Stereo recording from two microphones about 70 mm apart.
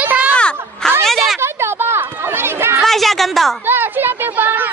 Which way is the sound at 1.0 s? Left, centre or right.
Centre.